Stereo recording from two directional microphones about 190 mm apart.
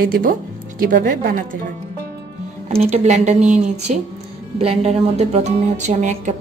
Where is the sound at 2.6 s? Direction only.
35° right (ahead or behind).